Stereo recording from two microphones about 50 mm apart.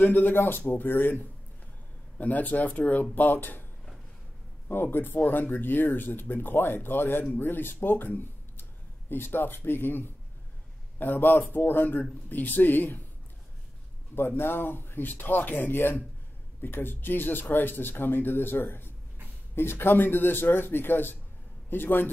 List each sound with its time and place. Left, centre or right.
0.0 s speech: left
2.1 s speech: left
3.2 s speech: left
4.6 s speech: left
14.1 s a man's voice: left